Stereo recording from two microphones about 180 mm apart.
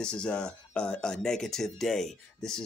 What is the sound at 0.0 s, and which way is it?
Speech, 5° left (ahead or behind).